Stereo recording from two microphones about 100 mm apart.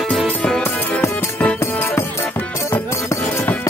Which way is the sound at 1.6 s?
25° left (ahead or behind).